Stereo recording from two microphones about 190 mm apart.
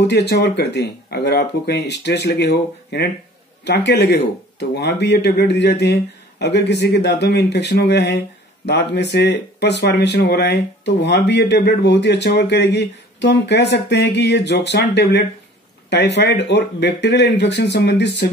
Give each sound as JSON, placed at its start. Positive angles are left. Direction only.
{"t": 0.0, "sound": "speech", "side_deg": 60}